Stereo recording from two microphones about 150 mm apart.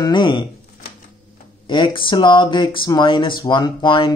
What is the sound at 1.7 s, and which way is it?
Speech, 30° left (ahead or behind).